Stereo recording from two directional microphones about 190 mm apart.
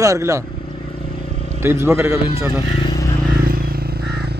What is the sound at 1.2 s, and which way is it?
Vehicle, 30° left (ahead or behind).